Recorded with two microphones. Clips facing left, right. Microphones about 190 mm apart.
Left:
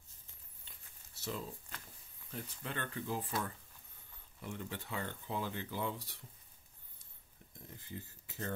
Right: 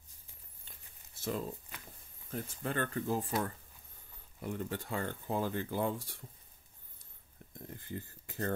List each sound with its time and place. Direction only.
0.7 s a sound: 50° right (ahead or behind)
2.3 s speech: 45° right (ahead or behind)
4.4 s speech: 45° right (ahead or behind)
7.9 s speech: 55° right (ahead or behind)